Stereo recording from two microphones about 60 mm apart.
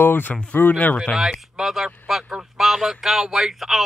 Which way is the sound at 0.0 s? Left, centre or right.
Left.